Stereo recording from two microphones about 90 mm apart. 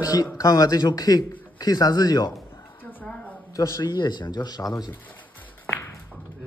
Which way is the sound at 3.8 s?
55° left (ahead or behind).